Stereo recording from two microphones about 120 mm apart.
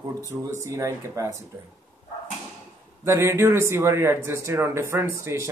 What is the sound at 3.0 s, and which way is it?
Speech, 25° right (ahead or behind).